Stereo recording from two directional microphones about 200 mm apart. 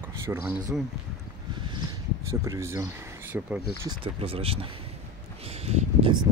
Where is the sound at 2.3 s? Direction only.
15° right (ahead or behind).